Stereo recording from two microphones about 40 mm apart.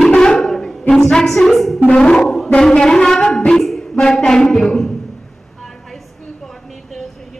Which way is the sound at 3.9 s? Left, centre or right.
Centre.